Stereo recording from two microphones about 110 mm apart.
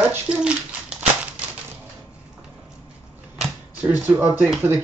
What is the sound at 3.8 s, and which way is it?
Speech, 15° right (ahead or behind).